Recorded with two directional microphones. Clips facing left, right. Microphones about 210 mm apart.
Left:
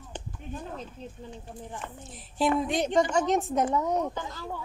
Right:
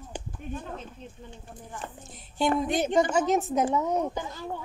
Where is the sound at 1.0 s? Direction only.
35° left (ahead or behind).